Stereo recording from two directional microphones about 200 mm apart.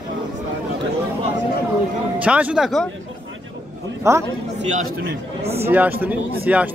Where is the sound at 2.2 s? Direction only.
5° right (ahead or behind).